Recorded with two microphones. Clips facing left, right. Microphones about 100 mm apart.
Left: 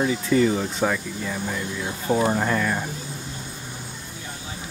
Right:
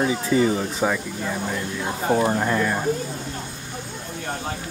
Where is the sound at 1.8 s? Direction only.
50° right (ahead or behind).